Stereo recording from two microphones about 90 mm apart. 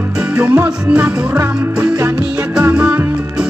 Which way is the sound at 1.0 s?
30° right (ahead or behind).